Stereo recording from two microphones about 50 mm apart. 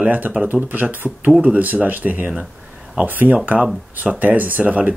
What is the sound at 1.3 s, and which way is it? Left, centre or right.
Speech, centre.